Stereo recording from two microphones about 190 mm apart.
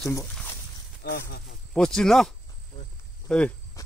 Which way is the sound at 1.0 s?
55° left (ahead or behind).